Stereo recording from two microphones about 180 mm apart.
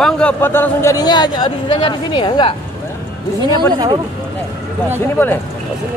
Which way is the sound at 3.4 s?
25° right (ahead or behind).